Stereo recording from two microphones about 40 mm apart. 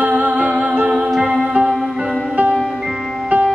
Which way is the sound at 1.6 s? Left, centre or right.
Right.